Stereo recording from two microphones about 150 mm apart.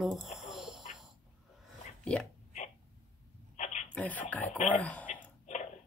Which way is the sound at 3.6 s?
50° left (ahead or behind).